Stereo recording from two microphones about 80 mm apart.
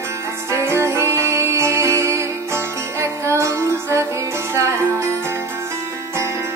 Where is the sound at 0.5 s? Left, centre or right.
Right.